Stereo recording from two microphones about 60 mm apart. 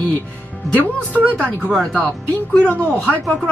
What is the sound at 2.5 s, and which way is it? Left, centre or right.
Speech, left.